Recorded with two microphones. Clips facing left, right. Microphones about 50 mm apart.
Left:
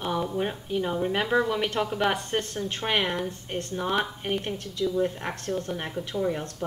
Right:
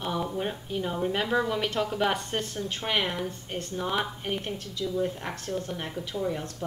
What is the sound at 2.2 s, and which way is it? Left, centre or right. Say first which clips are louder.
Speech: left 2 dB; left.